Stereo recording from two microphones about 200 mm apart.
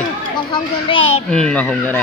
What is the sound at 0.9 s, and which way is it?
Speech, 25° left (ahead or behind).